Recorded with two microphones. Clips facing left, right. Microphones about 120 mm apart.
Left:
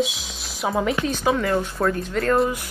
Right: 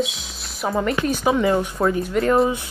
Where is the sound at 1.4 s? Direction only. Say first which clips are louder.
Right 3 dB; 15° right (ahead or behind).